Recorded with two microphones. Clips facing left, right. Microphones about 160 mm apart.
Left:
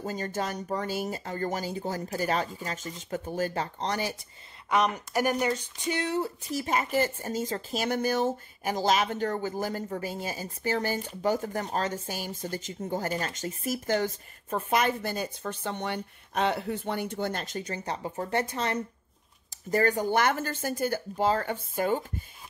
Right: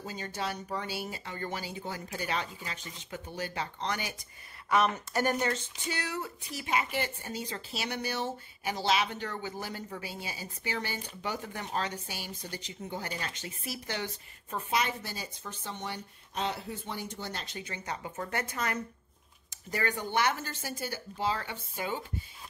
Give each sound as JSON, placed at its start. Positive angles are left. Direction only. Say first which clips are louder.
{"t": 0.0, "sound": "speech", "louder": "left 5 dB", "side_deg": 45}
{"t": 4.6, "sound": "speech", "louder": "left 1 dB", "side_deg": 15}
{"t": 6.4, "sound": "a woman's voice", "louder": "left 4 dB", "side_deg": 40}
{"t": 19.7, "sound": "speech", "louder": "left 7 dB", "side_deg": 40}